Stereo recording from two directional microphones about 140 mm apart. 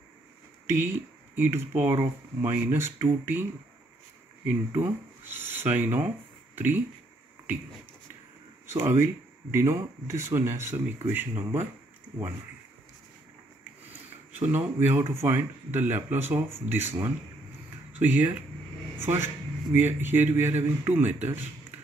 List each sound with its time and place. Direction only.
0.8 s speech: 15° right (ahead or behind)
4.5 s speech: 15° right (ahead or behind)
8.7 s speech: 20° right (ahead or behind)
14.5 s a man's voice: 15° right (ahead or behind)